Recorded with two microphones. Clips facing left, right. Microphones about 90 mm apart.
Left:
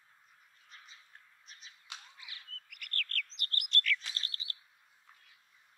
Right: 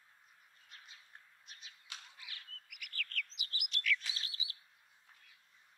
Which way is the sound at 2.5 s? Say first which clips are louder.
Left 5 dB; 5° right (ahead or behind).